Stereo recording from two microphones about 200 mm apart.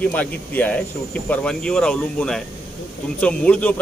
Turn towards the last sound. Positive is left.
turn(degrees=5)  # may be behind; listen again after turning